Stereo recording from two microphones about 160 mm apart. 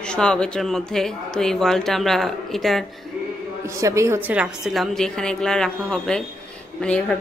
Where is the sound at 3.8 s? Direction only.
20° right (ahead or behind).